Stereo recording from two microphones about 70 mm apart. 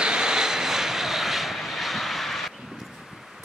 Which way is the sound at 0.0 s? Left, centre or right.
Centre.